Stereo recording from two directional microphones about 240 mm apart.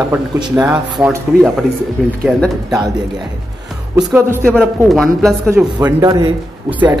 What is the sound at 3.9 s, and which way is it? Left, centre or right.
A man's voice, centre.